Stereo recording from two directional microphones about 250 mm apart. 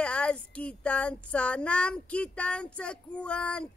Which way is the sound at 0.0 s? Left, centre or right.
Centre.